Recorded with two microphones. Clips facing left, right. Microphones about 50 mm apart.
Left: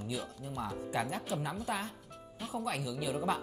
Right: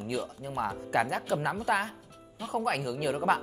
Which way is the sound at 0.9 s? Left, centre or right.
Right.